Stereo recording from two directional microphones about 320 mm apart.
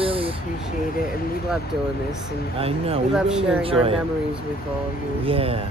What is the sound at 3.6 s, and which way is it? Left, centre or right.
Speech, centre.